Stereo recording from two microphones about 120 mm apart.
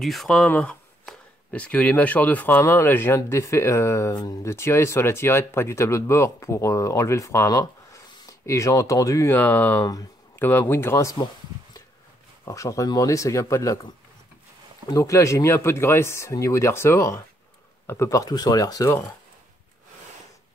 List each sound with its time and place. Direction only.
0.0 s speech: centre (ahead or behind)
0.5 s speech: 15° left (ahead or behind)
9.4 s speech: 15° left (ahead or behind)
12.4 s speech: 25° left (ahead or behind)
14.9 s speech: 25° left (ahead or behind)